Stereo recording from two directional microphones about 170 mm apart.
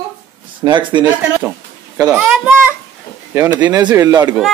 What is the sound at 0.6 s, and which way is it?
Speech, 25° right (ahead or behind).